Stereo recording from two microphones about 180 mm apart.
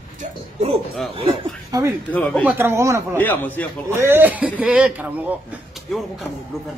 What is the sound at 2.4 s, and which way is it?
Speech, 15° right (ahead or behind).